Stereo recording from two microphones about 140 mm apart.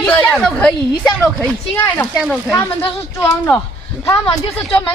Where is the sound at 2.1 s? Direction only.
Centre (ahead or behind).